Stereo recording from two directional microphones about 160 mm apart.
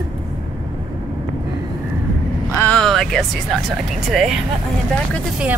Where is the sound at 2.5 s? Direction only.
15° left (ahead or behind).